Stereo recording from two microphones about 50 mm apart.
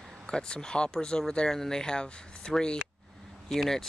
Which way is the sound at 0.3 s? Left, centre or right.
Centre.